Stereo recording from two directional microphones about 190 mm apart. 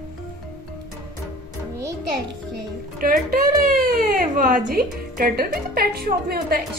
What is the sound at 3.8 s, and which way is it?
A woman's voice, 50° right (ahead or behind).